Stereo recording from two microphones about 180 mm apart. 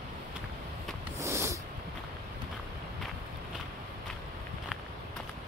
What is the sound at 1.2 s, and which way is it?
Snort, 15° right (ahead or behind).